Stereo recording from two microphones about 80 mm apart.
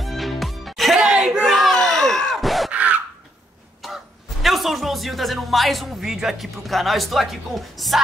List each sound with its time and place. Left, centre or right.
0.0 s music: centre
2.7 s a sound: centre
3.8 s speech: centre